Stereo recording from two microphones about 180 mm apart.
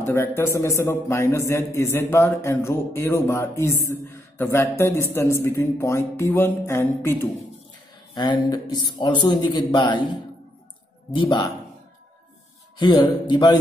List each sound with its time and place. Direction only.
0.0 s speech: 15° left (ahead or behind)
8.1 s speech: 25° left (ahead or behind)
11.1 s speech: 25° left (ahead or behind)
12.7 s speech: 25° left (ahead or behind)